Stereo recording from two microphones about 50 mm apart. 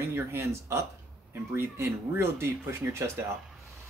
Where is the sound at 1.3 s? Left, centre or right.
Right.